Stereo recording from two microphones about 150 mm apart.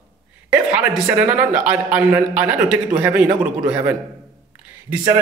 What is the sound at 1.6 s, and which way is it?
Speech, 10° right (ahead or behind).